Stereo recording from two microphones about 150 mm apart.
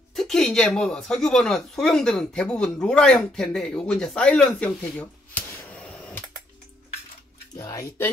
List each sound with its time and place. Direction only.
0.1 s a woman's voice: centre (ahead or behind)
7.5 s speech: 25° left (ahead or behind)